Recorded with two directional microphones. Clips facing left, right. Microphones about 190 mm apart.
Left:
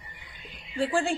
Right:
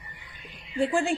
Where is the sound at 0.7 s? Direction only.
15° right (ahead or behind).